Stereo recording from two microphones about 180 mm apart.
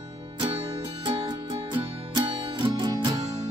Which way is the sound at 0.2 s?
30° right (ahead or behind).